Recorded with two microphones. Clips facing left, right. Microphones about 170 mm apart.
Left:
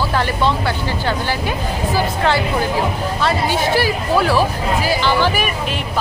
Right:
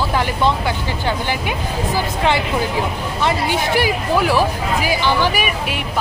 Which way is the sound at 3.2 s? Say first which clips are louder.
Even; 15° right (ahead or behind).